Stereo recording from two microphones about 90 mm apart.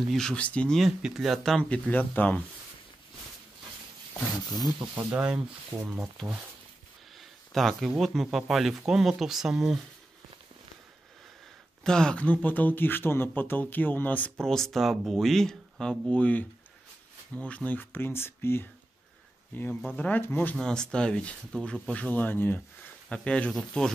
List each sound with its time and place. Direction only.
0.1 s speech: 10° left (ahead or behind)
0.7 s speech: centre (ahead or behind)
1.6 s speech: 15° left (ahead or behind)
4.9 s speech: 15° right (ahead or behind)
7.2 s a sound: centre (ahead or behind)
8.0 s speech: centre (ahead or behind)
11.8 s speech: 10° left (ahead or behind)
14.4 s speech: 5° left (ahead or behind); by 20.5 s 25° left (ahead or behind)
20.5 s speech: 5° left (ahead or behind)